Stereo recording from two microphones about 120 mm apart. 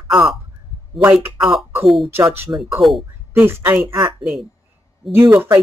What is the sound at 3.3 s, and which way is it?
Speech, 20° right (ahead or behind).